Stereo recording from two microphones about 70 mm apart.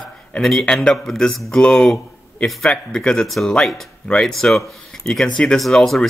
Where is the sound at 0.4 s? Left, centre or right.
Centre.